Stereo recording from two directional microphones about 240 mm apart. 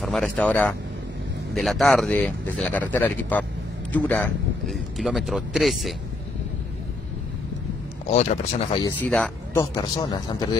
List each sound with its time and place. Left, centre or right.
0.0 s speech: centre
8.2 s speech: left
9.0 s speech: centre